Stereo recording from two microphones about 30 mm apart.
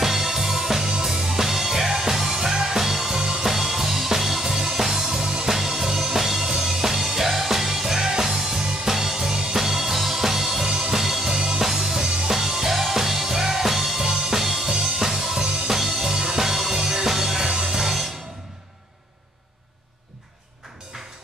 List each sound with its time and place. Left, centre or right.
0.0 s music: centre
5.2 s music: right
5.5 s music: centre